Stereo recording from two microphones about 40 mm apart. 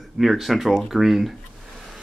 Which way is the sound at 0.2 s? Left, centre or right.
Centre.